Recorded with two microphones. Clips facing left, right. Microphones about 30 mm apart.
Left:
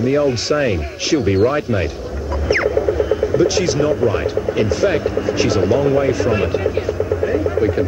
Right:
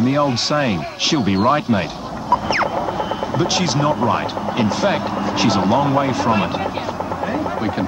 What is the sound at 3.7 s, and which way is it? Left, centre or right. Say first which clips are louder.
Speech: left 1 dB; centre.